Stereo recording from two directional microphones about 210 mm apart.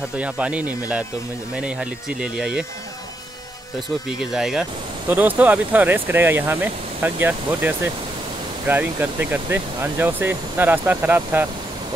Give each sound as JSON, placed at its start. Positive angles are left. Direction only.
{"t": 0.2, "sound": "speech", "side_deg": -5}
{"t": 4.1, "sound": "speech", "side_deg": 0}